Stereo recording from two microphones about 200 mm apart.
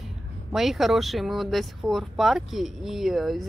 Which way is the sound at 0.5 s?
Centre (ahead or behind).